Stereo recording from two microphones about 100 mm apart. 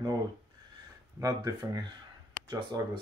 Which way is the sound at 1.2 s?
40° right (ahead or behind).